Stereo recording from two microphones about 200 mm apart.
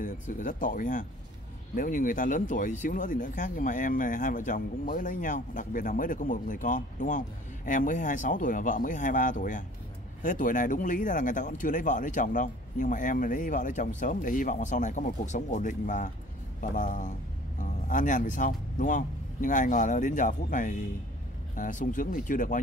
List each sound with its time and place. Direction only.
0.0 s a man's voice: 40° left (ahead or behind)